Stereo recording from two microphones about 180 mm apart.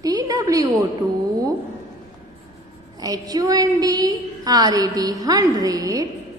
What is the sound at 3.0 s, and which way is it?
A woman's voice, 20° right (ahead or behind).